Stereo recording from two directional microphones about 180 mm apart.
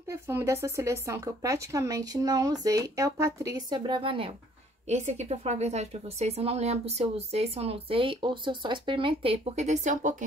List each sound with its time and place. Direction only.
0.1 s a woman's voice: 15° right (ahead or behind); by 10.1 s 40° right (ahead or behind)